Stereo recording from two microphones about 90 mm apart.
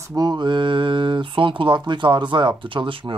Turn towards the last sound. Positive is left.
turn(degrees=-70)  # may be behind; listen again after turning